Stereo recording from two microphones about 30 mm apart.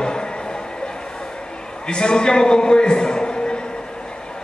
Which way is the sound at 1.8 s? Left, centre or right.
Left.